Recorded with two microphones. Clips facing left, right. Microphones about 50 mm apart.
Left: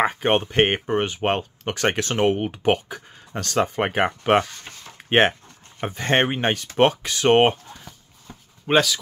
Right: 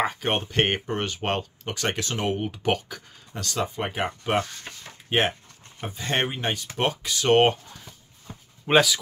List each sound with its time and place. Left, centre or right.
0.0 s speech: left
1.4 s speech: left
3.3 s speech: left
4.9 s a sound: left
5.8 s speech: left
7.3 s speech: left
7.8 s a sound: centre